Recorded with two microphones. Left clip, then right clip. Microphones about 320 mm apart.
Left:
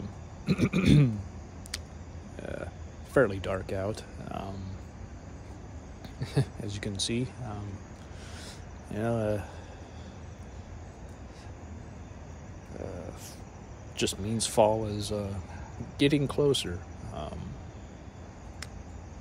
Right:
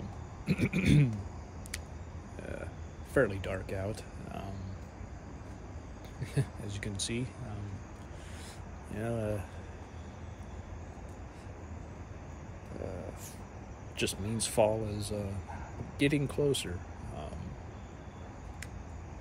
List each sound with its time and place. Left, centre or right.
0.5 s speech: centre
3.2 s speech: centre
6.2 s speech: centre
8.9 s speech: centre
13.9 s speech: centre